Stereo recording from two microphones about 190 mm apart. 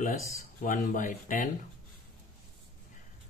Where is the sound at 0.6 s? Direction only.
45° left (ahead or behind).